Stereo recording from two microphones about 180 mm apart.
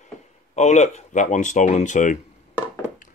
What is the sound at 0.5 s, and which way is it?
Speech, 40° left (ahead or behind).